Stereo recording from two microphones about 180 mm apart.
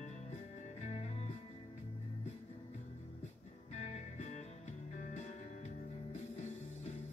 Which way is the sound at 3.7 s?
40° left (ahead or behind).